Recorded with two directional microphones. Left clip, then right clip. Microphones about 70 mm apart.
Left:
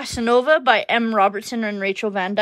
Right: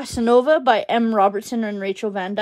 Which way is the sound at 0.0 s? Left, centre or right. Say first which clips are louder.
Right 1 dB; right.